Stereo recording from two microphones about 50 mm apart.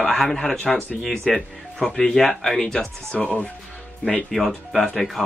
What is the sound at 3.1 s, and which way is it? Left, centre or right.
Speech, left.